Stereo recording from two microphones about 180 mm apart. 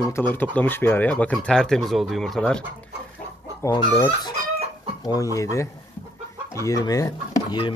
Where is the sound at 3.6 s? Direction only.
25° left (ahead or behind).